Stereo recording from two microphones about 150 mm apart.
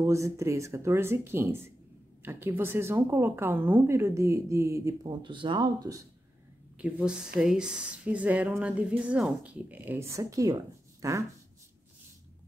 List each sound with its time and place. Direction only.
0.0 s speech: 20° right (ahead or behind)
5.2 s speech: 35° right (ahead or behind)
6.8 s speech: 10° right (ahead or behind)